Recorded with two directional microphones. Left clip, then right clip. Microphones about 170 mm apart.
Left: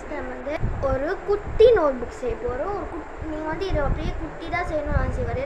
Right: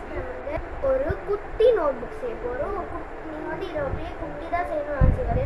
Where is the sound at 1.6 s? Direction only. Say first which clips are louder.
Left 4 dB; 50° left (ahead or behind).